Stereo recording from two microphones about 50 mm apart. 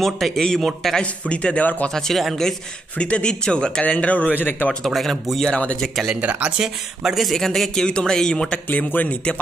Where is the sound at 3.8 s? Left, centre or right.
Left.